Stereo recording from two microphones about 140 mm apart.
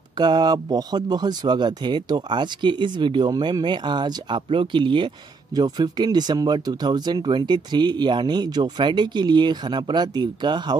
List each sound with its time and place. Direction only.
0.2 s speech: 30° right (ahead or behind)